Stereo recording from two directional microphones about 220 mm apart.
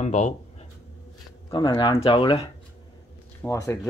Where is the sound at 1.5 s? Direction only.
20° left (ahead or behind).